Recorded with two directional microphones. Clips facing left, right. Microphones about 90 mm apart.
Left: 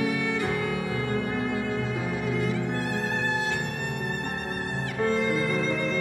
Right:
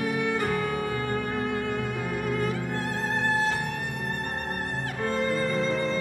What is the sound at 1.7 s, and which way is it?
Violin, 55° right (ahead or behind).